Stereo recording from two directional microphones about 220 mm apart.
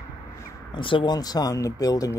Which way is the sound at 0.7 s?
25° left (ahead or behind).